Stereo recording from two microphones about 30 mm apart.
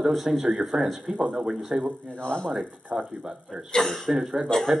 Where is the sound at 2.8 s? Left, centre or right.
Right.